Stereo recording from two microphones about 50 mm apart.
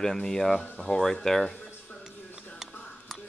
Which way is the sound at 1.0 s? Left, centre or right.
Centre.